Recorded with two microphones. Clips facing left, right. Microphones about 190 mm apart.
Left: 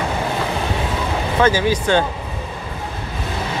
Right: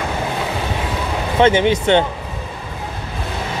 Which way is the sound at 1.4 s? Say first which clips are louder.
Right 3 dB; 25° right (ahead or behind).